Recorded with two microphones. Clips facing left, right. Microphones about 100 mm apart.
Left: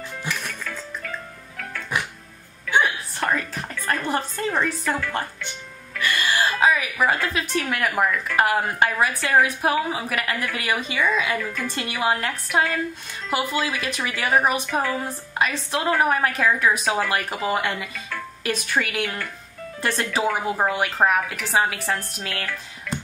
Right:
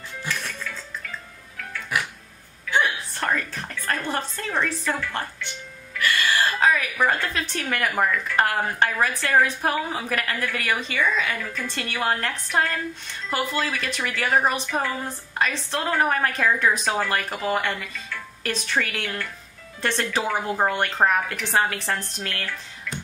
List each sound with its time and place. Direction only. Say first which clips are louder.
0.2 s music: even; 15° left (ahead or behind)
2.7 s a sound: left 2 dB; 10° left (ahead or behind)
5.9 s music: even; 20° left (ahead or behind); by 8.1 s 5° left (ahead or behind)
8.4 s a woman's voice: left 2 dB; 10° left (ahead or behind)